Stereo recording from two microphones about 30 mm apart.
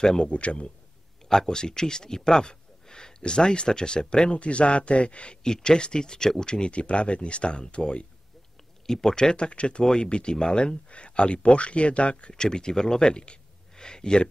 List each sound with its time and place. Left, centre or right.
0.0 s speech: left
0.3 s a man's voice: left
1.3 s speech: left
5.4 s speech: left
8.8 s speech: centre; by 12.4 s left
12.4 s speech: left